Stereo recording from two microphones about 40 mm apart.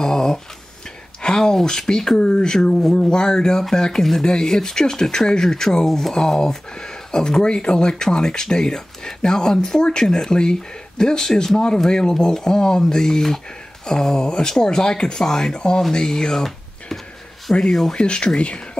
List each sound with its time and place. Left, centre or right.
0.0 s a sound: centre
1.2 s speech: centre
6.7 s speech: centre
17.5 s speech: left